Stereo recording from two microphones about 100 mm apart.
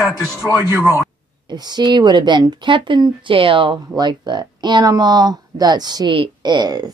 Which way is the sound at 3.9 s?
45° right (ahead or behind).